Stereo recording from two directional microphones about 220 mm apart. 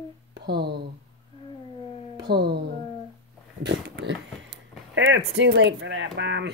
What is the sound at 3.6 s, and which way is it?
Speech, 50° right (ahead or behind).